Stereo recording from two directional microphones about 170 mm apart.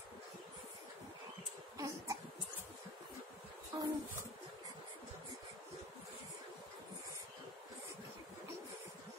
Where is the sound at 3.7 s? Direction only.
30° right (ahead or behind).